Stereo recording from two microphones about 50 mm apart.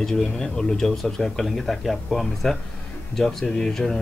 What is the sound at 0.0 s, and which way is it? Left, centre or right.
Speech, centre.